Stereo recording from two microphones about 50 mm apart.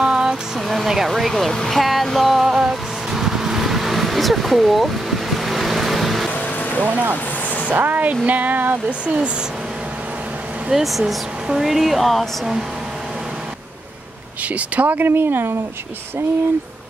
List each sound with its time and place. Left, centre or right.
0.0 s a sound: centre
0.6 s speech: centre
2.0 s vehicle: centre
7.7 s speech: right
8.8 s speech: right
10.7 s speech: centre
14.5 s speech: right
15.0 s speech: right